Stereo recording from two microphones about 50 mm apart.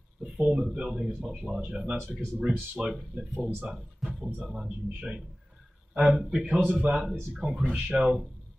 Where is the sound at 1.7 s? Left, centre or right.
Right.